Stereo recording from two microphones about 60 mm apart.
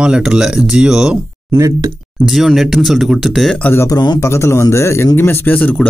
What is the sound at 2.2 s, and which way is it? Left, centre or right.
Speech, centre.